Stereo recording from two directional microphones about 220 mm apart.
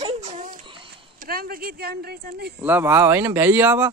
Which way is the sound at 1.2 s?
45° right (ahead or behind).